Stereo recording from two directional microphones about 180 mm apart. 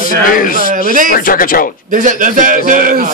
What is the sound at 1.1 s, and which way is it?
Speech, 50° left (ahead or behind).